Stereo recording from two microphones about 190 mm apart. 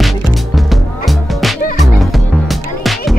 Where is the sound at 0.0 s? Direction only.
Centre (ahead or behind).